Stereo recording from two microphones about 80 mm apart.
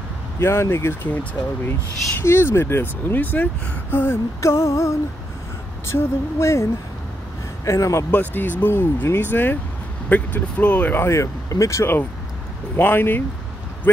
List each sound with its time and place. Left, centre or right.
0.4 s female singing: left
2.2 s speech: left
3.9 s female singing: left
8.1 s speech: left
11.1 s female singing: left
12.7 s speech: left